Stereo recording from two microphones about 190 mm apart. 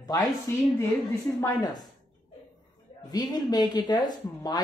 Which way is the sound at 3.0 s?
20° left (ahead or behind).